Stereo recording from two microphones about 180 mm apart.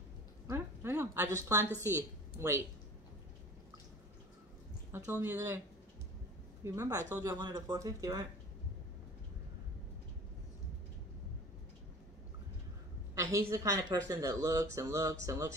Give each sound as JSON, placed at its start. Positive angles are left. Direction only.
{"t": 0.5, "sound": "a sound", "side_deg": -15}
{"t": 1.8, "sound": "a woman's voice", "side_deg": -15}
{"t": 4.9, "sound": "speech", "side_deg": -10}
{"t": 6.6, "sound": "speech", "side_deg": -20}
{"t": 13.1, "sound": "speech", "side_deg": -15}